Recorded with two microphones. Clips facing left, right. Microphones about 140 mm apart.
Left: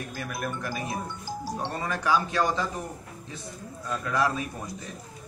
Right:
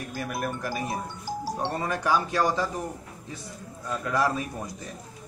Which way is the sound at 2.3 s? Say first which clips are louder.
Right 1 dB; 10° right (ahead or behind).